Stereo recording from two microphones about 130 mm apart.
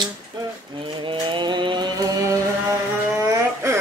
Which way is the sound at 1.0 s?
35° right (ahead or behind).